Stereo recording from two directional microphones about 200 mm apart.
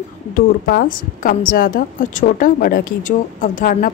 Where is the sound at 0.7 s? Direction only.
45° left (ahead or behind).